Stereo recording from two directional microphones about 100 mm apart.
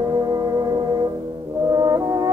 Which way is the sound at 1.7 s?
40° right (ahead or behind).